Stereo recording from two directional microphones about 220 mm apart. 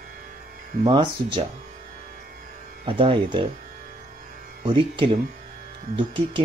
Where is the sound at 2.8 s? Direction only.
25° right (ahead or behind).